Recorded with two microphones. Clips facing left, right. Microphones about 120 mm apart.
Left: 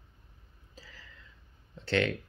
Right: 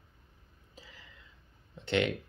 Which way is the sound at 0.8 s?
20° right (ahead or behind).